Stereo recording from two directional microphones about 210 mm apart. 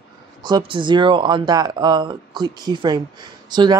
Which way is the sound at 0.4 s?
20° right (ahead or behind).